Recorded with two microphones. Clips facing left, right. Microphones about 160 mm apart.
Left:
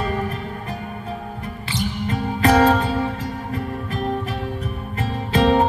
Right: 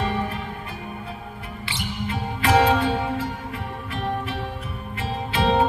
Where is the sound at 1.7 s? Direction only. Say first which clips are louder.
Left 5 dB; 40° left (ahead or behind).